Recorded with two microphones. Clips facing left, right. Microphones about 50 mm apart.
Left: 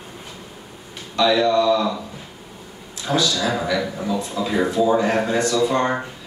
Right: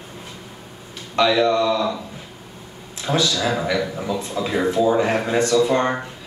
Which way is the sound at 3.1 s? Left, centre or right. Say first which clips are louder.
Even; centre.